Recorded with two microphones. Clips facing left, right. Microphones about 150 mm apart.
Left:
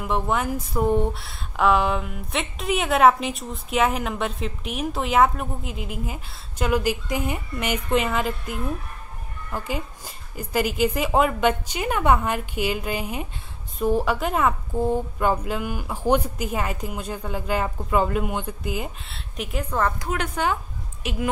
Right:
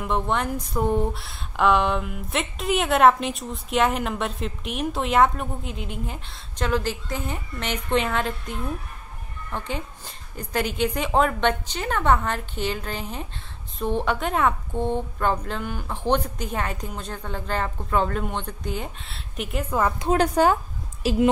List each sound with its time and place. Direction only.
0.0 s speech: 5° left (ahead or behind)
20.0 s a woman's voice: 35° right (ahead or behind)